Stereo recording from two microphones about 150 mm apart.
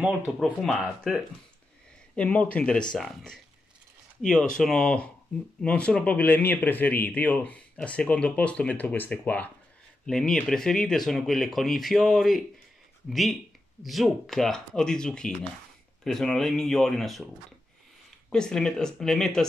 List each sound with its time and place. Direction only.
0.4 s speech: centre (ahead or behind)
18.3 s speech: 5° left (ahead or behind)